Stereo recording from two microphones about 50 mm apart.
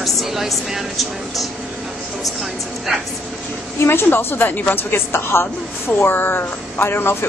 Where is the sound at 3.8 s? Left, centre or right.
Left.